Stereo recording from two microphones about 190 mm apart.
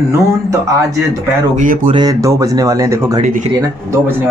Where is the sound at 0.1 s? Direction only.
15° right (ahead or behind).